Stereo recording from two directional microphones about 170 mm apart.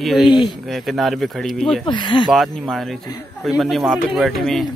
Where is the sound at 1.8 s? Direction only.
25° left (ahead or behind).